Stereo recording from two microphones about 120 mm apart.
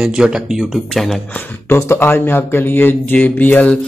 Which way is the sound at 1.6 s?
20° left (ahead or behind).